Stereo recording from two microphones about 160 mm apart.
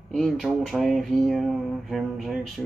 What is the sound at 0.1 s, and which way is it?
Speech, centre (ahead or behind).